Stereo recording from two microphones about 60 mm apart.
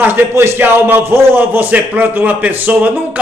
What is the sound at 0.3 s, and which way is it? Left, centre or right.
Speech, right.